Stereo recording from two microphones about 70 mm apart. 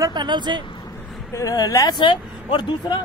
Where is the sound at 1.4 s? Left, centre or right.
Left.